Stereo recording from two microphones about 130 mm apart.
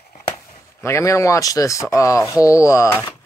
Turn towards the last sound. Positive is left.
turn(degrees=20)  # may be behind; listen again after turning